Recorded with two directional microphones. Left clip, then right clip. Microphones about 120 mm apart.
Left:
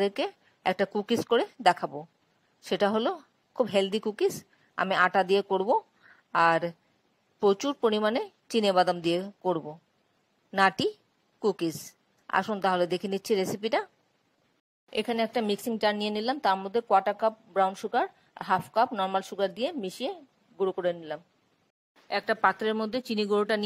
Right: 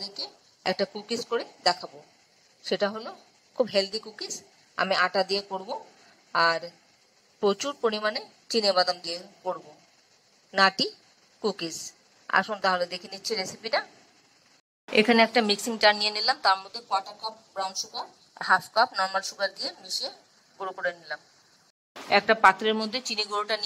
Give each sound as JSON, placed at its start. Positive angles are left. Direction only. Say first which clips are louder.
{"t": 0.2, "sound": "a woman's voice", "louder": "left 4 dB", "side_deg": 30}
{"t": 14.9, "sound": "a woman's voice", "louder": "right 9 dB", "side_deg": 55}
{"t": 18.9, "sound": "a woman's voice", "louder": "right 1 dB", "side_deg": 20}
{"t": 19.6, "sound": "a woman's voice", "louder": "left 1 dB", "side_deg": 45}
{"t": 20.5, "sound": "a woman's voice", "louder": "left 3 dB", "side_deg": 20}
{"t": 22.1, "sound": "speech", "louder": "right 6 dB", "side_deg": 55}